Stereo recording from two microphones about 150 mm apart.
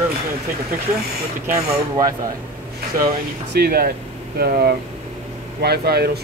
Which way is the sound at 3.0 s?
90° right.